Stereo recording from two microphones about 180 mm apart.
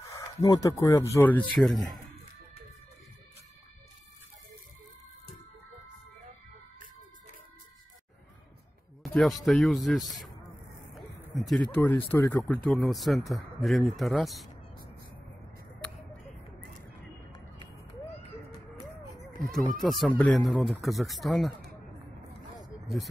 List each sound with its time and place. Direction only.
0.0 s speech: 20° left (ahead or behind); by 2.0 s centre (ahead or behind)
9.0 s speech: centre (ahead or behind)
19.8 s speech: centre (ahead or behind)
22.6 s vehicle: centre (ahead or behind)